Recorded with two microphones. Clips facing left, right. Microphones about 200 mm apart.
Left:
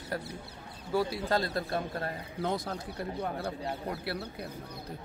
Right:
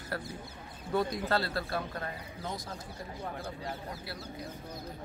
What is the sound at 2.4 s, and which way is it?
Speech, 65° left (ahead or behind).